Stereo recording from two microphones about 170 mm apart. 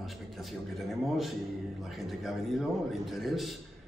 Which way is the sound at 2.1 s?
Centre (ahead or behind).